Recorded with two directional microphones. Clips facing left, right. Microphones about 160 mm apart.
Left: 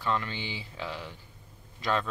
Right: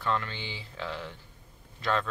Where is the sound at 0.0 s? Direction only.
10° left (ahead or behind).